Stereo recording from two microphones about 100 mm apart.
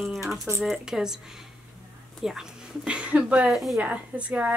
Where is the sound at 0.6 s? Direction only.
5° right (ahead or behind).